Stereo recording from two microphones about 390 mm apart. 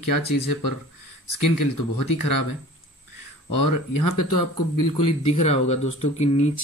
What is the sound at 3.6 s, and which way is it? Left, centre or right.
Speech, left.